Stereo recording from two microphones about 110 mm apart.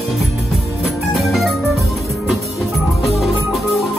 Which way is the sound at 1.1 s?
Centre (ahead or behind).